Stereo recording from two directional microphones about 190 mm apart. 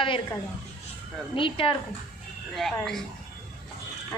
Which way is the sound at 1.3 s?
25° left (ahead or behind).